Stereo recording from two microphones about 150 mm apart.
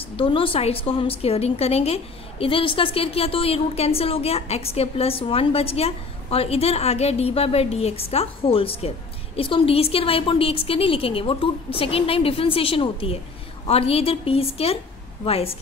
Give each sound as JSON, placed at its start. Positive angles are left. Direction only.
{"t": 0.1, "sound": "a woman's voice", "side_deg": 35}